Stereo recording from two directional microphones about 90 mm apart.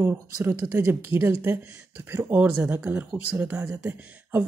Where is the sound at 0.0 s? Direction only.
25° right (ahead or behind).